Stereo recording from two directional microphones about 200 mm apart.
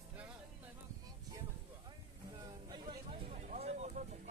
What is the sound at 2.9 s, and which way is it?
Vehicle, 30° right (ahead or behind).